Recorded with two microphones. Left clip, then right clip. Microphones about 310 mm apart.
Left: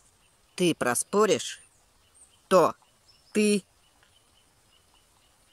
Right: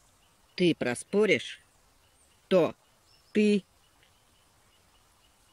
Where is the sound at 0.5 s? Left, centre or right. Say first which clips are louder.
Left 2 dB; centre.